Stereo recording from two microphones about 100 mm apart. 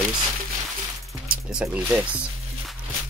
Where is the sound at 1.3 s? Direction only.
10° right (ahead or behind).